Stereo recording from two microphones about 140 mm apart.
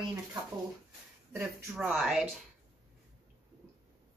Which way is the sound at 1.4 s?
5° right (ahead or behind).